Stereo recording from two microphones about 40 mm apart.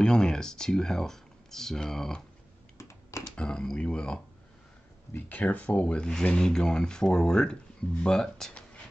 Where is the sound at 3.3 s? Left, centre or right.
Left.